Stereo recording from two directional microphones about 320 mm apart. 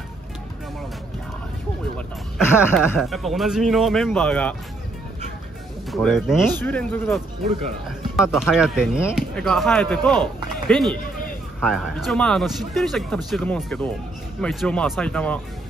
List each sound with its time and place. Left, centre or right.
2.0 s speech: centre
5.9 s speech: centre
8.2 s speech: centre